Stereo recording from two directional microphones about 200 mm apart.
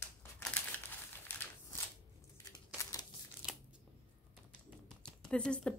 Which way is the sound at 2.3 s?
15° left (ahead or behind).